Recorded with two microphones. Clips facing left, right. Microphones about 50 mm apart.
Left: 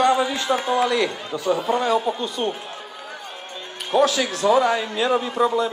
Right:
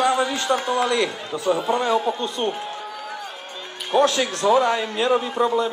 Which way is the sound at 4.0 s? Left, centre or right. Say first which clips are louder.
Even; right.